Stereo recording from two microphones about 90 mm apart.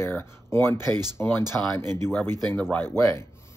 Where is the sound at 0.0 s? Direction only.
25° left (ahead or behind).